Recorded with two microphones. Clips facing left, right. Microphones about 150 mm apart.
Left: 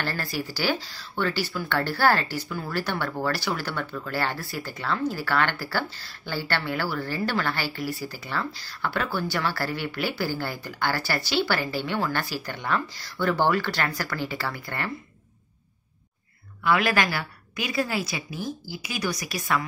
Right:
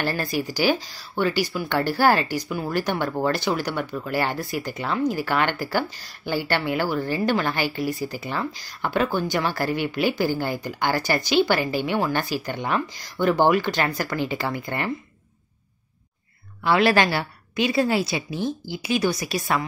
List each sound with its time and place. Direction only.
0.0 s speech: 15° right (ahead or behind)
16.6 s a woman's voice: 30° right (ahead or behind)